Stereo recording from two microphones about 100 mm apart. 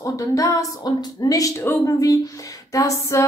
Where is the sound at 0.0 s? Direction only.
35° left (ahead or behind).